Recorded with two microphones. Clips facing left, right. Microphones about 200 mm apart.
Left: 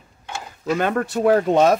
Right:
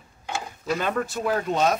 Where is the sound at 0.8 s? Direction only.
65° left (ahead or behind).